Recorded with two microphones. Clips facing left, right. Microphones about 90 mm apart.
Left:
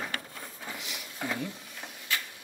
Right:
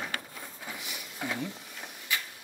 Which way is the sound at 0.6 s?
Centre (ahead or behind).